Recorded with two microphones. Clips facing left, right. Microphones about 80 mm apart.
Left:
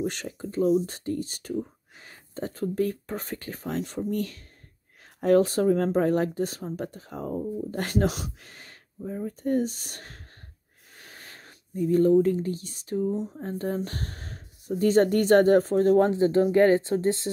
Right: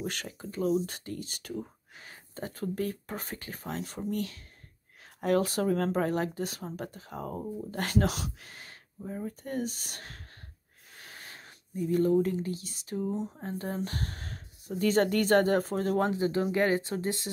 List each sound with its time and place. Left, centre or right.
0.0 s speech: left